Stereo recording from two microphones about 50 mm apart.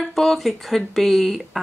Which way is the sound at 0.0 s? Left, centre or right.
Centre.